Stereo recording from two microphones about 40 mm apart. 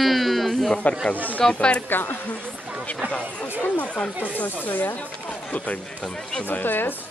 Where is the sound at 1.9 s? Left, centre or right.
Left.